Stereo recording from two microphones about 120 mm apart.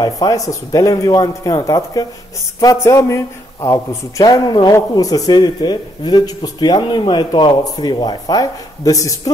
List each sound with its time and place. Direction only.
0.0 s speech: 30° left (ahead or behind)
2.6 s a sound: 25° left (ahead or behind)
3.6 s speech: 30° left (ahead or behind)